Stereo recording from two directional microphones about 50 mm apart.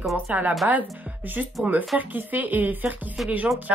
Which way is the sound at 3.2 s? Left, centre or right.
Centre.